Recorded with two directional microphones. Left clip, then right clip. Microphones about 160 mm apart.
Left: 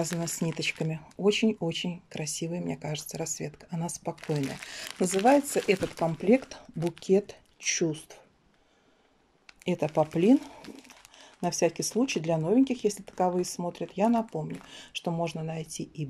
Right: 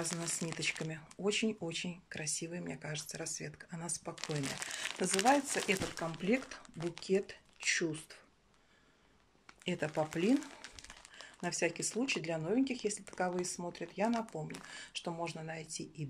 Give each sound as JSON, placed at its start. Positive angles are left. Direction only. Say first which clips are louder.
{"t": 0.2, "sound": "speech", "louder": "left 7 dB", "side_deg": 20}
{"t": 9.7, "sound": "speech", "louder": "left 9 dB", "side_deg": 20}
{"t": 11.6, "sound": "speech", "louder": "left 8 dB", "side_deg": 20}